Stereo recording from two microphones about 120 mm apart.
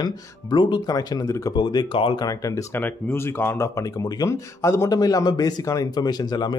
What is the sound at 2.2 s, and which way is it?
Speech, 25° left (ahead or behind).